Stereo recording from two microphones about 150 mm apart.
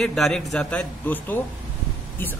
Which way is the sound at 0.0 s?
5° left (ahead or behind).